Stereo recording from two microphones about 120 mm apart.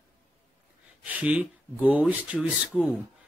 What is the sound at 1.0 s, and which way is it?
Speech, 10° right (ahead or behind).